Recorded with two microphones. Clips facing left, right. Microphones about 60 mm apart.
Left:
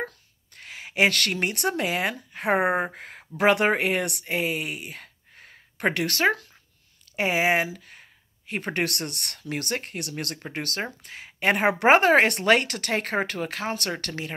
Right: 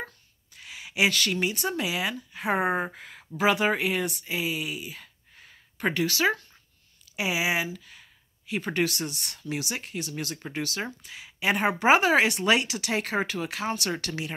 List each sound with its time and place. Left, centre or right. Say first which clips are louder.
0.0 s a sound: left 6 dB; left
2.6 s speech: left 3 dB; centre
2.9 s speech: left 1 dB; left